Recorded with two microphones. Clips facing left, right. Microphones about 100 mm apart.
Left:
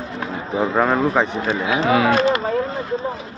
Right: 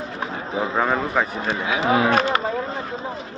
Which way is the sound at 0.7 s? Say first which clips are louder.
Left 4 dB; centre (ahead or behind).